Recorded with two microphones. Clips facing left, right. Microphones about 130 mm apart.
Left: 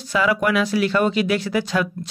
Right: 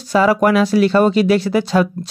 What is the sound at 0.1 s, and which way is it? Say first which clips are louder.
Speech: right 6 dB; 35° right (ahead or behind).